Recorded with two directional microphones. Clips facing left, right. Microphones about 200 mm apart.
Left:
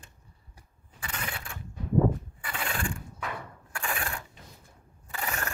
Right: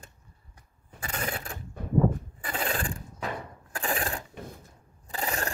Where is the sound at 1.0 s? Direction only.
40° right (ahead or behind).